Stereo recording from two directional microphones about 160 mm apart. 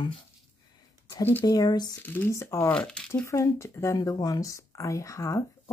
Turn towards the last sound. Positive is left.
turn(degrees=20)  # may be behind; listen again after turning